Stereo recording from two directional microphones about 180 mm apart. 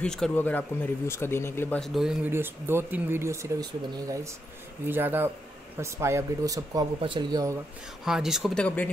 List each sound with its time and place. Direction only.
0.0 s speech: 5° left (ahead or behind)
2.0 s speech: 5° right (ahead or behind); by 7.5 s 20° right (ahead or behind)
8.0 s speech: centre (ahead or behind)